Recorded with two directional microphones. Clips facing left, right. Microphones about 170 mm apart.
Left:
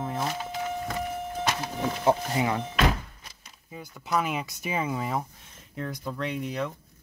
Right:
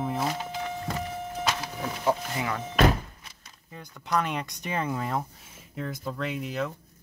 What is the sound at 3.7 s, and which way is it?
Speech, 5° left (ahead or behind).